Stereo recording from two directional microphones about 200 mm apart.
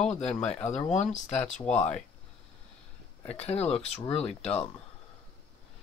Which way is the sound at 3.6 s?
30° left (ahead or behind).